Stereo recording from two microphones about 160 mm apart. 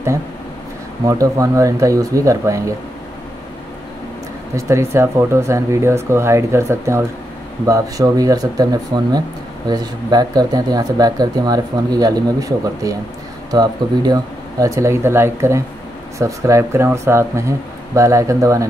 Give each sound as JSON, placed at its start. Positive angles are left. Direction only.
{"t": 1.0, "sound": "speech", "side_deg": -20}
{"t": 4.6, "sound": "speech", "side_deg": -20}